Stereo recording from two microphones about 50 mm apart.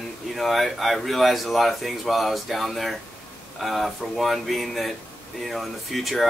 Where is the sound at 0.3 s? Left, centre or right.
Centre.